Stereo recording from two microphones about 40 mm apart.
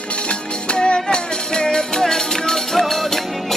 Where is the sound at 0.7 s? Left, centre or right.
Left.